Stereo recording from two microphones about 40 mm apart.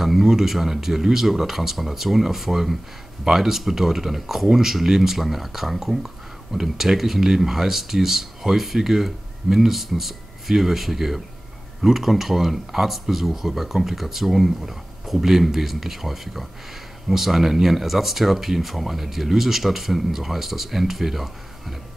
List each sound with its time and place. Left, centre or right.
0.0 s speech: centre